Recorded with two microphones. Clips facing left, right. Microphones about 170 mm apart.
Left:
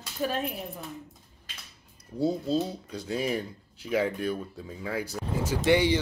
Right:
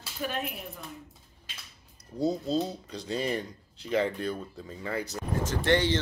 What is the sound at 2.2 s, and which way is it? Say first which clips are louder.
Speech: left 1 dB; 10° left (ahead or behind).